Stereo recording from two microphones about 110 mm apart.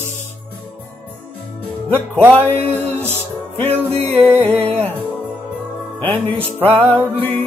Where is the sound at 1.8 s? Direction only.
15° left (ahead or behind).